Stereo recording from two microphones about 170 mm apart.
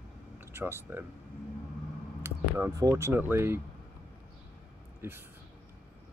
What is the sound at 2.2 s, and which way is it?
Speech, 15° right (ahead or behind).